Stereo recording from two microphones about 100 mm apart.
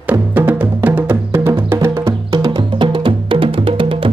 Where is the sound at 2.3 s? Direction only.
45° right (ahead or behind); by 4.1 s 60° right (ahead or behind).